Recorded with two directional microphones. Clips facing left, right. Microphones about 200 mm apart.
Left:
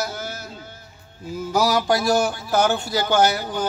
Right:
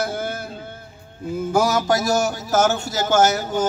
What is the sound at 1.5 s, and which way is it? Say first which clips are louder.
A man's voice: even; 45° right (ahead or behind).